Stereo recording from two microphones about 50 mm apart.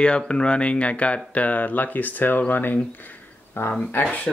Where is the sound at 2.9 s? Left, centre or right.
Left.